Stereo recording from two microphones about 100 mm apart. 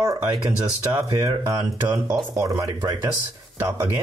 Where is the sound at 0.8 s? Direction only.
35° right (ahead or behind).